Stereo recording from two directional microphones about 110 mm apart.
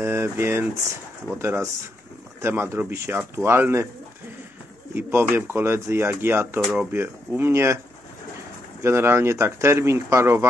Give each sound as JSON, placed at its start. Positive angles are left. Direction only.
{"t": 0.0, "sound": "speech", "side_deg": -20}
{"t": 4.9, "sound": "speech", "side_deg": -20}
{"t": 6.6, "sound": "speech", "side_deg": -5}
{"t": 6.9, "sound": "speech", "side_deg": -20}
{"t": 8.8, "sound": "speech", "side_deg": -20}